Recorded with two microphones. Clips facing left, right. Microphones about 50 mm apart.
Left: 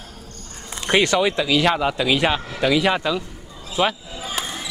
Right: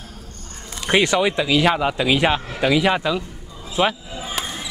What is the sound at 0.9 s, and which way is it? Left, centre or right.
Speech, centre.